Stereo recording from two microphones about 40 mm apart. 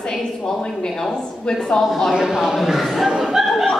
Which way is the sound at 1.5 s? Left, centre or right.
Centre.